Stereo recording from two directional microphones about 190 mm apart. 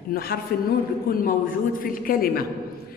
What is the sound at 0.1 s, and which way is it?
A man's voice, 50° left (ahead or behind).